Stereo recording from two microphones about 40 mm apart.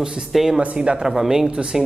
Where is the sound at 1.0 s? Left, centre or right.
Centre.